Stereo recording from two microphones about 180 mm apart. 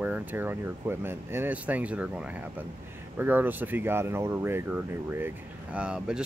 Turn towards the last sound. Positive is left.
turn(degrees=-5)  # may be behind; listen again after turning